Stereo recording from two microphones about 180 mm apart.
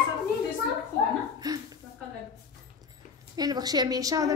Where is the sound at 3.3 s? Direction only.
20° right (ahead or behind).